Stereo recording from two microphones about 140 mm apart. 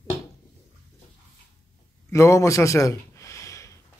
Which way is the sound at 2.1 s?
20° left (ahead or behind).